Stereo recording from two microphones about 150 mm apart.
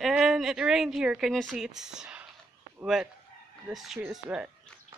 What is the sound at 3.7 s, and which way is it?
Speech, centre (ahead or behind).